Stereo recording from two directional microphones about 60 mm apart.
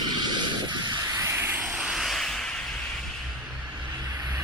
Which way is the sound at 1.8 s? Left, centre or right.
Centre.